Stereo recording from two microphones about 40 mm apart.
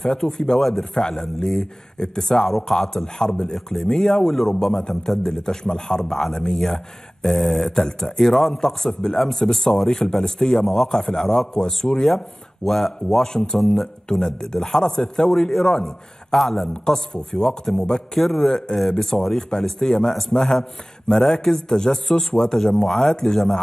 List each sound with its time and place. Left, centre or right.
0.0 s speech: centre
13.6 s a man's voice: centre
16.3 s a man's voice: centre
18.1 s a man's voice: centre